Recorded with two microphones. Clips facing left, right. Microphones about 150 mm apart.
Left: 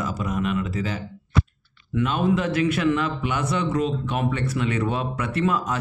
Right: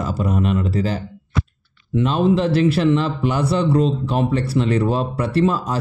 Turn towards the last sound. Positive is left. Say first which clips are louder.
# right 5 dB
turn(degrees=-30)  # may be behind; listen again after turning